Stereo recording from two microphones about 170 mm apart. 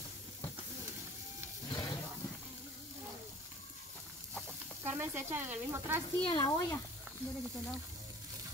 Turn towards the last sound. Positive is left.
turn(degrees=30)  # may be behind; listen again after turning